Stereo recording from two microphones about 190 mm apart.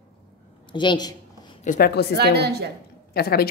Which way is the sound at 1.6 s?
45° left (ahead or behind).